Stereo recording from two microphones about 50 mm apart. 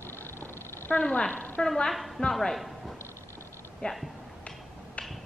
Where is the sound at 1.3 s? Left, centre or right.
Left.